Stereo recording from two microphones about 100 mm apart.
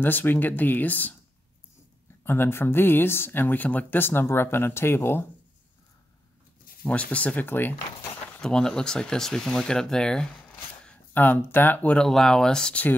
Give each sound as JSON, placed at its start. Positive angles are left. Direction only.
{"t": 0.0, "sound": "speech", "side_deg": 20}
{"t": 2.2, "sound": "speech", "side_deg": 25}
{"t": 6.8, "sound": "speech", "side_deg": 15}
{"t": 8.4, "sound": "speech", "side_deg": 5}
{"t": 10.9, "sound": "speech", "side_deg": 20}